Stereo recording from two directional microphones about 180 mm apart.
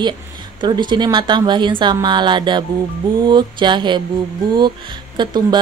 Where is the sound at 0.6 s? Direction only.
25° right (ahead or behind).